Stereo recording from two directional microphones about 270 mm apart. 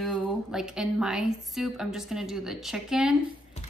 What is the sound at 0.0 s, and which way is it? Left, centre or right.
Speech, centre.